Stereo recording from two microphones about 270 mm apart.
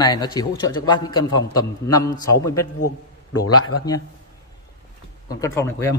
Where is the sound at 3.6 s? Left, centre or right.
Left.